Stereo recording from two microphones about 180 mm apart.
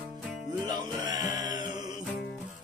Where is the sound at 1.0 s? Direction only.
20° right (ahead or behind).